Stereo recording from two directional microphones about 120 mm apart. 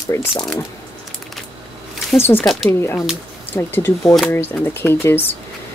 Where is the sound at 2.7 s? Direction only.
20° left (ahead or behind).